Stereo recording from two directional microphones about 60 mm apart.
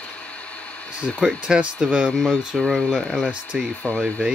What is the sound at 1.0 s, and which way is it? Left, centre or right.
Speech, centre.